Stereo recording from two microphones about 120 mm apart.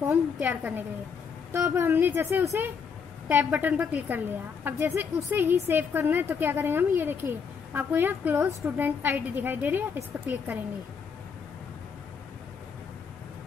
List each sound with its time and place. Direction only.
0.0 s a woman's voice: 15° right (ahead or behind)